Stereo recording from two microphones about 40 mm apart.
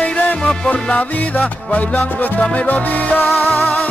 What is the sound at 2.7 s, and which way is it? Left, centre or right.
Music, left.